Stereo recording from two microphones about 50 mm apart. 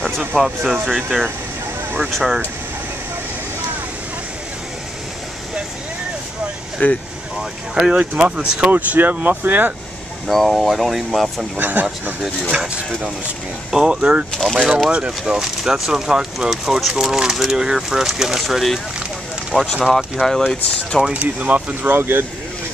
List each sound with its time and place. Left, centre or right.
0.3 s speech: centre
0.8 s speech: centre
6.8 s speech: left
7.9 s speech: right
10.2 s speech: centre
11.5 s speech: right
13.7 s speech: centre
14.3 s speech: centre
14.9 s speech: right; by 18.8 s centre
19.5 s speech: centre
20.2 s speech: centre
21.1 s speech: right
21.9 s speech: right